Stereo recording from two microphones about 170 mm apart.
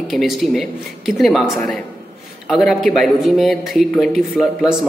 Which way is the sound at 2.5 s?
Centre (ahead or behind).